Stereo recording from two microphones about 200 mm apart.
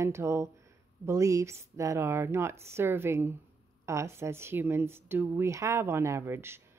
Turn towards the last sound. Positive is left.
turn(degrees=-10)  # may be behind; listen again after turning